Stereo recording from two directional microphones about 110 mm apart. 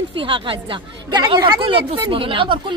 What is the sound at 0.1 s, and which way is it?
Speech, 50° right (ahead or behind).